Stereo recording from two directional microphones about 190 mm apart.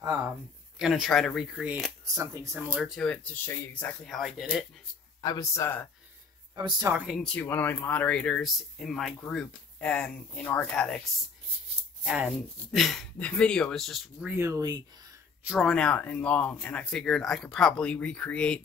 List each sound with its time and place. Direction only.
0.7 s speech: 5° right (ahead or behind)
5.2 s speech: 20° left (ahead or behind)
6.5 s speech: 20° right (ahead or behind)
6.9 s speech: 5° right (ahead or behind)
7.2 s speech: 5° left (ahead or behind)
12.0 s speech: 5° right (ahead or behind)
14.3 s speech: 15° right (ahead or behind)
15.4 s speech: centre (ahead or behind)